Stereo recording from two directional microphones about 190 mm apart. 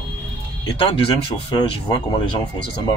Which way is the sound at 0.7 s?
30° left (ahead or behind).